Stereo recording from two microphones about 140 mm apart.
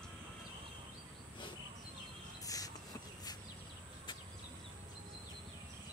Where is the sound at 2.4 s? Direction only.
25° left (ahead or behind).